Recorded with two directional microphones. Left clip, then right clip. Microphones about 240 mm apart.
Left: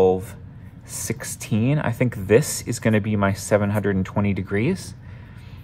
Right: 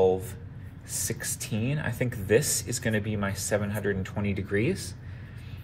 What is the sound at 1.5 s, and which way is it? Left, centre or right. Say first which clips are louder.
Speech: left 11 dB; left.